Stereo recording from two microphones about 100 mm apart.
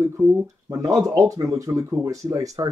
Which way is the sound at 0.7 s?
35° right (ahead or behind).